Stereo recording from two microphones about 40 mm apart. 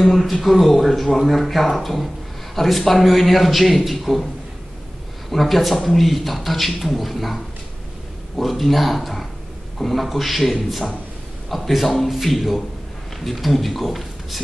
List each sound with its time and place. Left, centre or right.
0.0 s speech: centre
5.3 s speech: centre
8.4 s a man's voice: centre